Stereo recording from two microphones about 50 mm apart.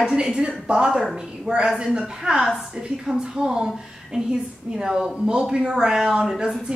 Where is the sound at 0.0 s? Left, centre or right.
Centre.